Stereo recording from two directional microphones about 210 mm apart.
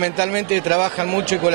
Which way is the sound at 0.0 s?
15° right (ahead or behind).